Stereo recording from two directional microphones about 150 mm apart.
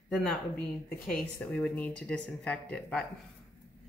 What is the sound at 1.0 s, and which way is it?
Speech, 10° left (ahead or behind).